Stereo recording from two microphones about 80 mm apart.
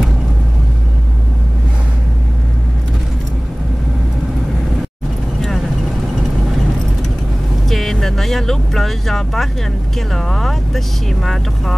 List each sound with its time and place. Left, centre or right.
7.6 s vehicle: centre
9.9 s speech: centre